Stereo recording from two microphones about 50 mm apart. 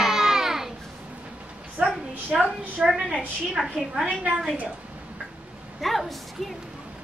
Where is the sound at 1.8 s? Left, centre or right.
Right.